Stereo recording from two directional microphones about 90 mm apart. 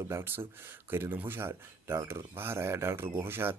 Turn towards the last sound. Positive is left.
turn(degrees=-25)  # may be behind; listen again after turning